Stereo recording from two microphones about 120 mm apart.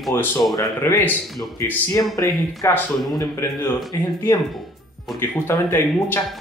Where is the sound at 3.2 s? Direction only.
35° left (ahead or behind).